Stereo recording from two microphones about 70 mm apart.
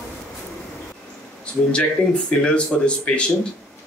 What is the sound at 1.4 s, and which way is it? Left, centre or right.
Speech, centre.